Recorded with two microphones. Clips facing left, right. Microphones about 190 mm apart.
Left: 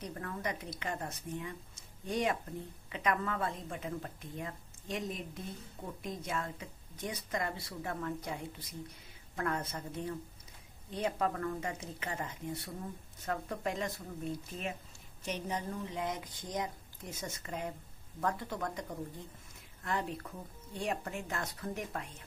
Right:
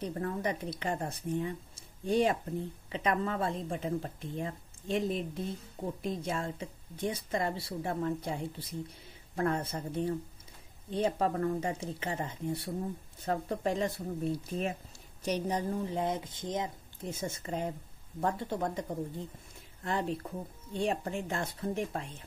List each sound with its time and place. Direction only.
0.0 s a woman's voice: 30° right (ahead or behind)